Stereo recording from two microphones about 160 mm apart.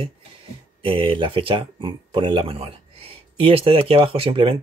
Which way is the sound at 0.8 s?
35° right (ahead or behind).